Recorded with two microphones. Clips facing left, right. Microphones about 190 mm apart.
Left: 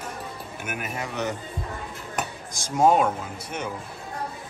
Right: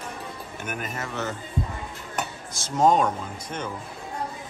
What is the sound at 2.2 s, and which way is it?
Dishes, 10° left (ahead or behind).